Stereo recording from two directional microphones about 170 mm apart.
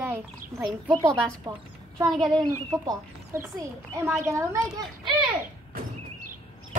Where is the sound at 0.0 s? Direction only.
15° right (ahead or behind).